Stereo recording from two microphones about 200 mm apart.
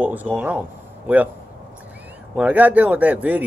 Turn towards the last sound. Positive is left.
turn(degrees=-10)  # may be behind; listen again after turning